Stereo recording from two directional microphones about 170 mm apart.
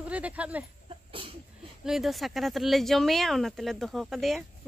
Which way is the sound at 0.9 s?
30° right (ahead or behind).